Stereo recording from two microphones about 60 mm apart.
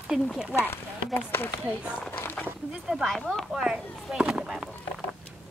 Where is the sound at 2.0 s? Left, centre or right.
Left.